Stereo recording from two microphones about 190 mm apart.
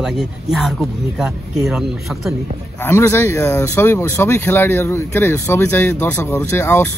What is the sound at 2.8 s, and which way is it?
Speech, 15° left (ahead or behind).